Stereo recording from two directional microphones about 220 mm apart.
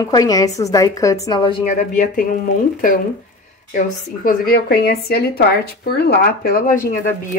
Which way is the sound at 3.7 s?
40° left (ahead or behind).